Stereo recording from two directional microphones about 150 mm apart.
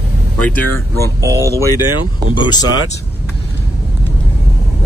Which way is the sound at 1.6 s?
25° left (ahead or behind).